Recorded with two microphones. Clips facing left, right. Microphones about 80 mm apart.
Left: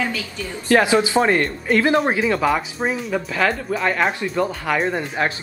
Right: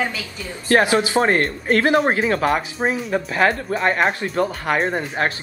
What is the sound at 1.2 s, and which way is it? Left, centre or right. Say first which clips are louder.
Speech: even; right.